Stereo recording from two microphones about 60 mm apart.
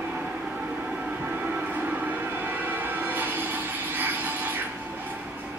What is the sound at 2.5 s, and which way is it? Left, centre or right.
Music, right.